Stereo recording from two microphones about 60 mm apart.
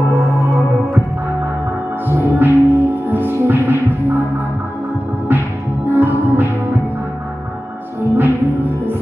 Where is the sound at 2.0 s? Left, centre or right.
Right.